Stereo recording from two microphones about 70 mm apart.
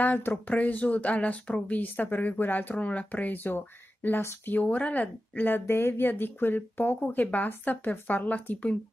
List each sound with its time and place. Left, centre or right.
0.0 s speech: left
4.6 s speech: centre